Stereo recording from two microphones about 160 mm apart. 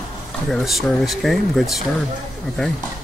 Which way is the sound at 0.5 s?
Centre (ahead or behind).